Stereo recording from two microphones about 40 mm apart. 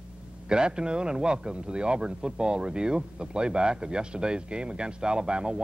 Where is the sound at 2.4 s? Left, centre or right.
Right.